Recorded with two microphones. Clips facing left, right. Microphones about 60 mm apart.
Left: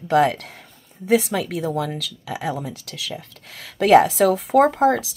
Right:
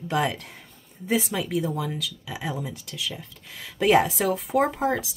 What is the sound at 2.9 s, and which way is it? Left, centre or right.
Speech, left.